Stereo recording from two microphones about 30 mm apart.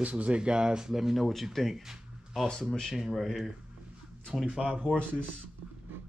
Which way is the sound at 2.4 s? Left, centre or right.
Left.